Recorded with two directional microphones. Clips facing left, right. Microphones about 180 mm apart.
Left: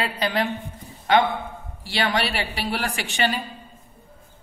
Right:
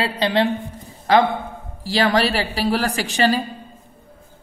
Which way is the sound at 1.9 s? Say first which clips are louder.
Right 6 dB; 35° right (ahead or behind).